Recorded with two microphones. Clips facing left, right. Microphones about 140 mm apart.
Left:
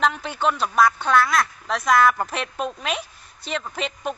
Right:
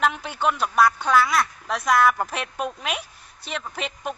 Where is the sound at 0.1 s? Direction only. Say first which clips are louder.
Left 1 dB; 10° right (ahead or behind).